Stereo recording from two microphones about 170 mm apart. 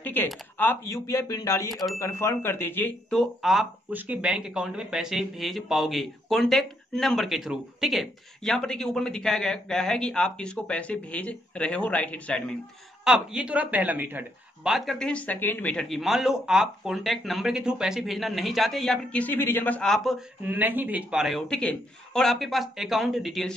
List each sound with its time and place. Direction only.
0.0 s a sound: 10° left (ahead or behind)
0.6 s speech: 15° left (ahead or behind)
1.7 s speech: centre (ahead or behind)
2.0 s speech: 15° left (ahead or behind)
13.0 s speech: 5° right (ahead or behind)
20.4 s speech: 10° right (ahead or behind)